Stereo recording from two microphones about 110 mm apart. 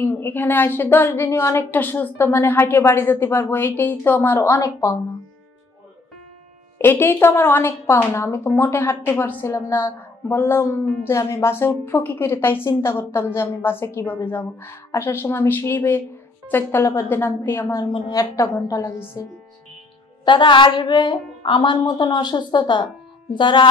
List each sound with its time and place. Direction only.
0.0 s a woman's voice: 20° left (ahead or behind)
4.6 s speech: 30° left (ahead or behind)
6.8 s a woman's voice: 20° left (ahead or behind)
18.1 s speech: 30° left (ahead or behind)
18.7 s a woman's voice: 20° left (ahead or behind)
20.2 s a woman's voice: 45° left (ahead or behind)